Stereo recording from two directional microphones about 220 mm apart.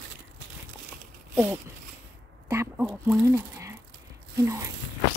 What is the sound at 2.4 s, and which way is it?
A woman's voice, 10° right (ahead or behind).